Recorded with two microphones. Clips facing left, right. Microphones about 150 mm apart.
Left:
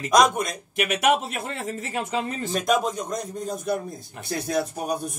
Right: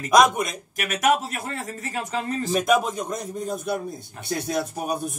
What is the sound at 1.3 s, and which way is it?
Speech, 20° left (ahead or behind).